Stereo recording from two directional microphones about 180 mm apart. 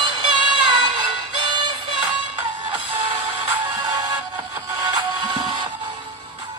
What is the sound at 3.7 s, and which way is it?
Music, 20° right (ahead or behind).